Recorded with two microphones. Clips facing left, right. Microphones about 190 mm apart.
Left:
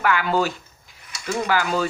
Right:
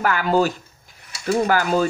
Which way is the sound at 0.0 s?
40° right (ahead or behind).